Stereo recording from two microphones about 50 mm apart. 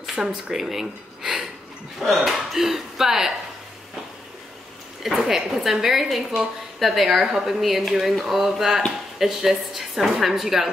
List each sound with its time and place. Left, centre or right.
0.1 s speech: centre
0.5 s speech: centre
5.0 s a woman's voice: centre